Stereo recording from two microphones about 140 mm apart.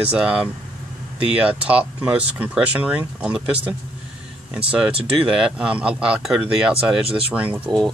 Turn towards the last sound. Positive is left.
turn(degrees=-10)  # may be behind; listen again after turning